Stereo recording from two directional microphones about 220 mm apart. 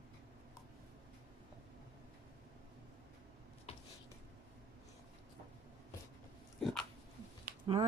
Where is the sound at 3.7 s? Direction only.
25° left (ahead or behind).